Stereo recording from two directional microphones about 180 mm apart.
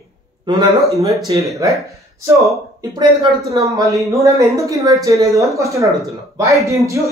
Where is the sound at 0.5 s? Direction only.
25° right (ahead or behind).